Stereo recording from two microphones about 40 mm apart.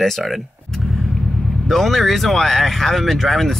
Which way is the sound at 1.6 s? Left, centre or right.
Centre.